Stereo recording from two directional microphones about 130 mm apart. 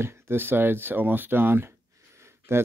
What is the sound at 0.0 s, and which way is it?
Speech, 20° right (ahead or behind).